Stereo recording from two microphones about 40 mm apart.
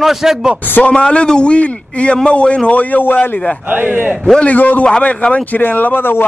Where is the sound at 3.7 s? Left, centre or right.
Right.